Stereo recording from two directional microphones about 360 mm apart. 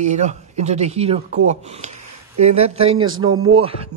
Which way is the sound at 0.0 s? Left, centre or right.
Centre.